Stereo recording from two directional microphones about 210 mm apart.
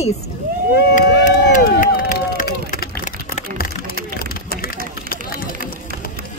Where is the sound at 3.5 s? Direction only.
45° left (ahead or behind).